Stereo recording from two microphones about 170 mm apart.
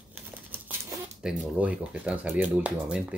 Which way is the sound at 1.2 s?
5° right (ahead or behind).